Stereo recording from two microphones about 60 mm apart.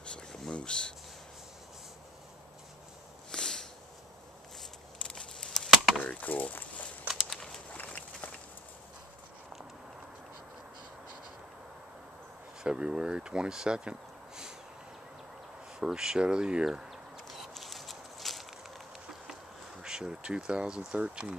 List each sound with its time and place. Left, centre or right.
0.0 s a sound: centre
3.3 s a sound: centre
5.0 s chop: centre
6.2 s speech: left
7.7 s run: left
12.6 s speech: centre
15.8 s speech: centre
17.3 s a sound: centre
19.8 s speech: centre